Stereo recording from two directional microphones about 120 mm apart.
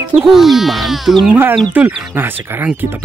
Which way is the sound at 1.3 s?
15° right (ahead or behind).